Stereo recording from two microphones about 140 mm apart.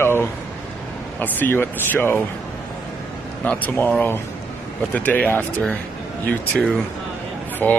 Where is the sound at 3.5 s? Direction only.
10° left (ahead or behind).